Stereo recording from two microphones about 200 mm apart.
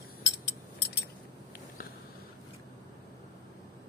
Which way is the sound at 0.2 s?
60° left (ahead or behind).